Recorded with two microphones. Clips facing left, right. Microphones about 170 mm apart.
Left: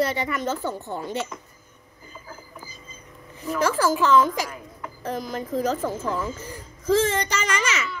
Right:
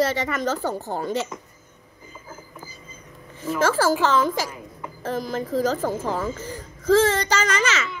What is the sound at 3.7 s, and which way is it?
Speech, 90° right.